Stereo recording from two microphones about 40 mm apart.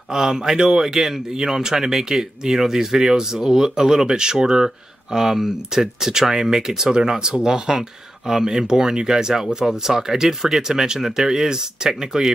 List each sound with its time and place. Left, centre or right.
0.1 s speech: centre